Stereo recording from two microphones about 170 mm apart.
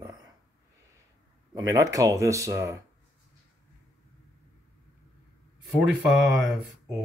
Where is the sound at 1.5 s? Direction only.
20° right (ahead or behind).